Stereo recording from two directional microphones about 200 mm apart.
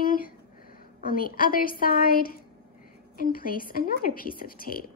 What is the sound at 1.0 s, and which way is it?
A woman's voice, 45° left (ahead or behind).